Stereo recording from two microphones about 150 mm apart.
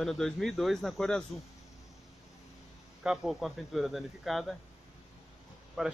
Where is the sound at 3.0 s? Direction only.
5° right (ahead or behind).